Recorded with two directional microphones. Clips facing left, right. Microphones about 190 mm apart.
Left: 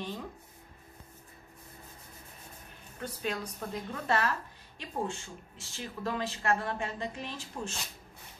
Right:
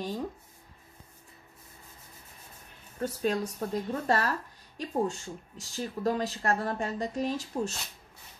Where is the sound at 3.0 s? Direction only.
40° right (ahead or behind).